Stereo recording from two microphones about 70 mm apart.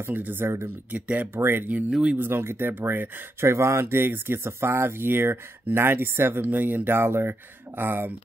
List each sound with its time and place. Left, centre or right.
0.0 s speech: right
1.9 s speech: centre
2.1 s speech: right